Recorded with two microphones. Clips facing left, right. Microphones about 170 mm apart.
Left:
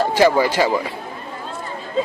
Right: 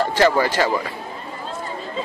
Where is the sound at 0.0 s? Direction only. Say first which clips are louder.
Left 2 dB; 15° left (ahead or behind).